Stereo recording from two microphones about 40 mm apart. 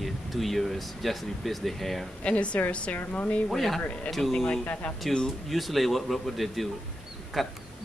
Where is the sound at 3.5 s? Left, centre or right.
Centre.